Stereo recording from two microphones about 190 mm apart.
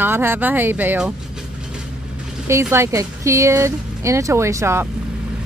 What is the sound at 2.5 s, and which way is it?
Speech, 15° right (ahead or behind).